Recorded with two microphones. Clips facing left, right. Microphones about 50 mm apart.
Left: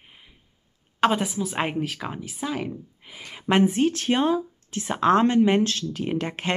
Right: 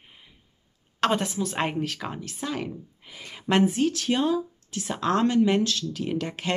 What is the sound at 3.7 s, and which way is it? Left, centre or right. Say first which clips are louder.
Speech: left 2 dB; left.